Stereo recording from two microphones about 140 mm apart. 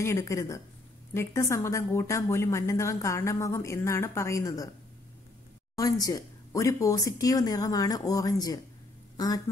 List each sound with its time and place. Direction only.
0.0 s a woman's voice: 20° left (ahead or behind)
5.8 s a woman's voice: 25° left (ahead or behind)